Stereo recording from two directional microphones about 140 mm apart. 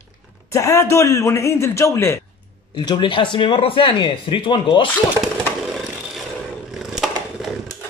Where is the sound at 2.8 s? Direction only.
35° left (ahead or behind).